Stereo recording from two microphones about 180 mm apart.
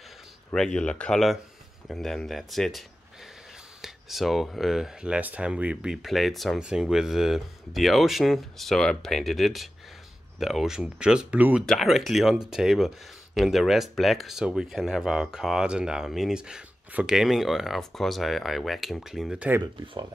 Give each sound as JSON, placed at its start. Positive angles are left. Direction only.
{"t": 0.5, "sound": "speech", "side_deg": 5}
{"t": 3.8, "sound": "speech", "side_deg": 0}
{"t": 19.6, "sound": "speech", "side_deg": -25}